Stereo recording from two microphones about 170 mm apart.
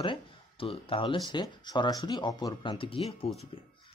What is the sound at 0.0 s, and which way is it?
Speech, 30° left (ahead or behind).